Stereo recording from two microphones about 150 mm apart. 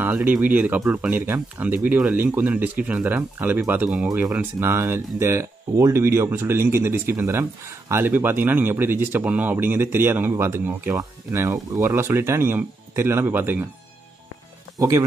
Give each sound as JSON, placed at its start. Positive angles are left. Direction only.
{"t": 0.0, "sound": "speech", "side_deg": -10}
{"t": 14.8, "sound": "speech", "side_deg": -20}